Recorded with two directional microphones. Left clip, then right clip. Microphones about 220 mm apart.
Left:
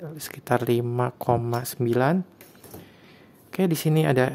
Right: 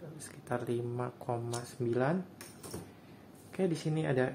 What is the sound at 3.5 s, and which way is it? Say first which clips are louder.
Speech: left 10 dB; 50° left (ahead or behind).